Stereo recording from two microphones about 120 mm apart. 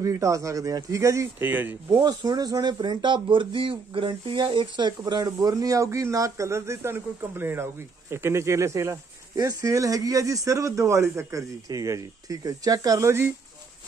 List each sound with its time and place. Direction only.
0.0 s speech: 30° right (ahead or behind)
2.0 s speech: 35° right (ahead or behind)